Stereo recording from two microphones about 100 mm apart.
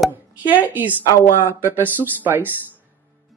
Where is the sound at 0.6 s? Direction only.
15° right (ahead or behind).